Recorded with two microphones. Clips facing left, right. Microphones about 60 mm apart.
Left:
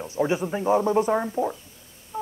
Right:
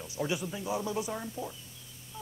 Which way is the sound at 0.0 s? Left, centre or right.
Left.